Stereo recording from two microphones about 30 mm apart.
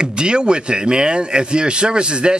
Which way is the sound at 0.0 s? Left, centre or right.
Right.